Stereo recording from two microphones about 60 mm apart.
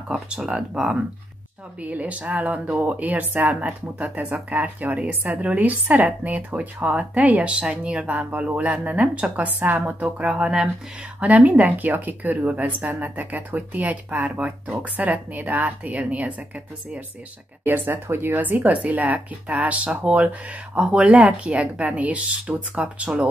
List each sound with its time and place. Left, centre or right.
0.5 s speech: centre
1.8 s speech: right
10.1 s speech: centre
17.6 s speech: right; by 23.2 s centre